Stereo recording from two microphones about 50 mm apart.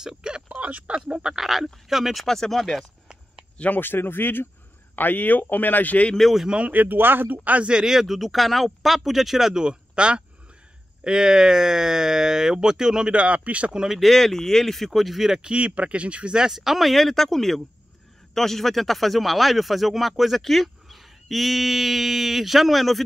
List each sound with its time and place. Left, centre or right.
0.0 s speech: centre
0.5 s speech: right
1.4 s speech: centre
2.2 s speech: centre
3.5 s speech: left
3.8 s speech: left
6.7 s speech: right
7.4 s speech: right
7.7 s speech: centre; by 13.7 s right
13.9 s speech: centre
15.5 s speech: right
16.5 s speech: centre